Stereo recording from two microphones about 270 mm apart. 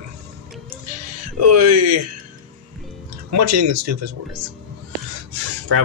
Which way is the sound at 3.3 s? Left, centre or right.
Right.